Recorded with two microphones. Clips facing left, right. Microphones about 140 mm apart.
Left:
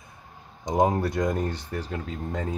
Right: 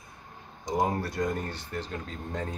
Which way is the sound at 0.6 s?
20° left (ahead or behind).